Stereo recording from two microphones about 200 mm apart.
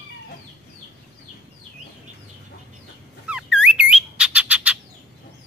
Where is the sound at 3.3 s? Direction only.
5° right (ahead or behind).